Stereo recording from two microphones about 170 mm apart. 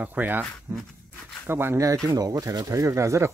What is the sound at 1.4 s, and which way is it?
Speech, 15° right (ahead or behind).